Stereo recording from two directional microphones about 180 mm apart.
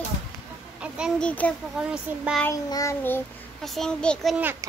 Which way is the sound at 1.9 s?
5° right (ahead or behind).